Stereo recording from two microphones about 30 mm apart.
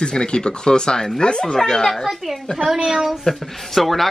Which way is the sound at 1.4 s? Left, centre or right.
Centre.